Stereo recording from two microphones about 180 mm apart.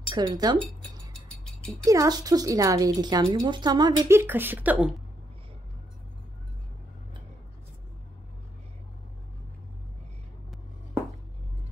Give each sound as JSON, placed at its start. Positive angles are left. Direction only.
{"t": 0.1, "sound": "a woman's voice", "side_deg": -20}
{"t": 1.1, "sound": "a sound", "side_deg": 5}
{"t": 1.9, "sound": "a woman's voice", "side_deg": -20}
{"t": 4.2, "sound": "speech", "side_deg": -10}